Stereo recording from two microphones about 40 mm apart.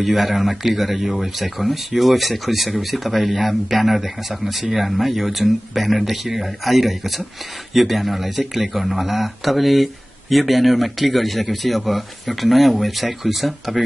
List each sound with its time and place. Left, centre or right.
0.0 s speech: centre